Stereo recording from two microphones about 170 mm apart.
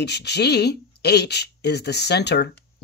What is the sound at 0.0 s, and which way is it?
Speech, 80° left.